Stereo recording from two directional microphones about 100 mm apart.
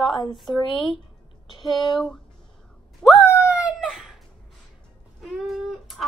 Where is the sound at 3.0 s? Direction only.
5° right (ahead or behind).